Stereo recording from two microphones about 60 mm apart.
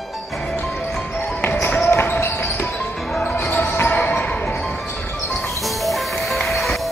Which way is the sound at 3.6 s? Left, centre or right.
Left.